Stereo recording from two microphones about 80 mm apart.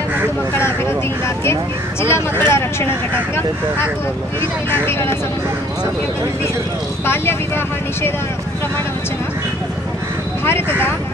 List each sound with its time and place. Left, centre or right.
0.6 s speech: left
4.4 s speech: left
7.1 s speech: left
10.4 s speech: left